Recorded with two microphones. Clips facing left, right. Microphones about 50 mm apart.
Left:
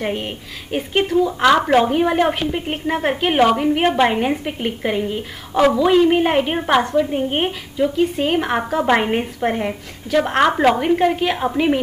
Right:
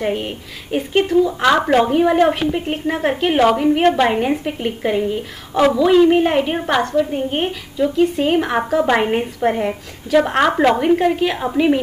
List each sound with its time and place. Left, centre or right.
0.0 s a woman's voice: centre
7.2 s a woman's voice: left
7.8 s a woman's voice: centre